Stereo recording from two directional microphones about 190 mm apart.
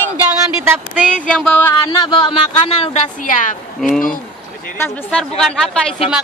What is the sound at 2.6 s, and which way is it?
Speech, 35° left (ahead or behind).